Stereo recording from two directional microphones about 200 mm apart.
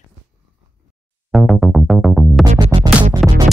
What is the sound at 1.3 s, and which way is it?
Music, centre (ahead or behind).